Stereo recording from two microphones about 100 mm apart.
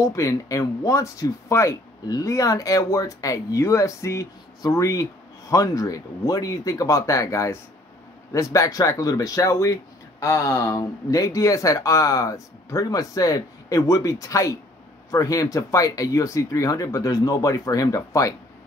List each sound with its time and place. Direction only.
0.0 s speech: 35° left (ahead or behind)